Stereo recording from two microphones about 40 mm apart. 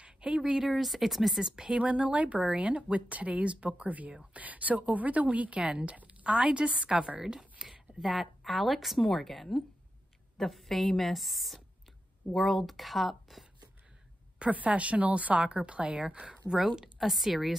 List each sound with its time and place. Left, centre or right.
0.0 s a sound: right
0.4 s speech: centre
0.7 s a woman's voice: centre
1.4 s speech: centre
1.8 s speech: right
7.2 s a woman's voice: centre
7.6 s a woman's voice: centre
14.4 s speech: right
16.5 s a woman's voice: centre